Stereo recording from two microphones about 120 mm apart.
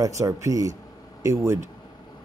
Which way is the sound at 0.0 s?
25° right (ahead or behind).